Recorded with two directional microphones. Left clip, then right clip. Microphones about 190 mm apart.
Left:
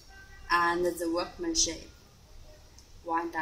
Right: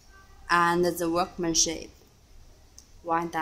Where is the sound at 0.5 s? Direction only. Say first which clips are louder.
Right 4 dB; 55° right (ahead or behind).